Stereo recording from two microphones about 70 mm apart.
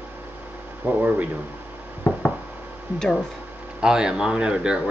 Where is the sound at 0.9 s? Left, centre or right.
Right.